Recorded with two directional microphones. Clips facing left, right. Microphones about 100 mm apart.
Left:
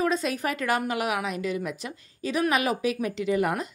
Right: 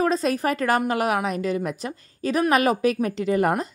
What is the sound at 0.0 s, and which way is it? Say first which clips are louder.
A woman's voice: right 4 dB; 40° right (ahead or behind).